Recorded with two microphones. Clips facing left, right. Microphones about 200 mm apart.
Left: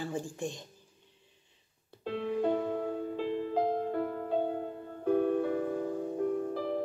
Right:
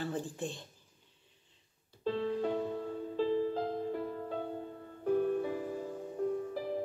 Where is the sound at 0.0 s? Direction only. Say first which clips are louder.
Left 1 dB; 15° left (ahead or behind).